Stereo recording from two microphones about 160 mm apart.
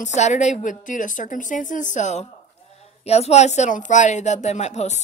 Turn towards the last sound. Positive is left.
turn(degrees=45)  # may be behind; listen again after turning